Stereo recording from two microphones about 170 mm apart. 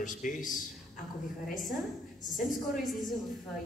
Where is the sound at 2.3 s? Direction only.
Centre (ahead or behind).